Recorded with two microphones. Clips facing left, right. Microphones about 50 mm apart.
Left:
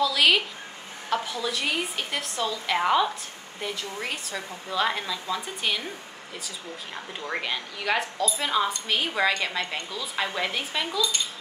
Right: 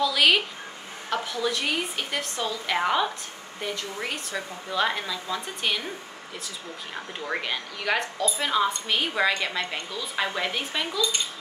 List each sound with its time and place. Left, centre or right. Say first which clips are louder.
0.0 s speech: even; centre